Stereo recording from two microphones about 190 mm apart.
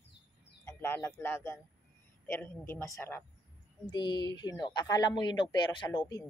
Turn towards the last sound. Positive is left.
turn(degrees=20)  # may be behind; listen again after turning